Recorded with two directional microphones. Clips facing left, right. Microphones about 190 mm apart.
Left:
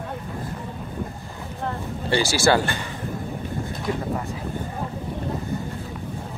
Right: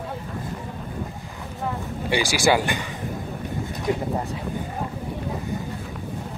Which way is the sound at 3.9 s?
20° right (ahead or behind).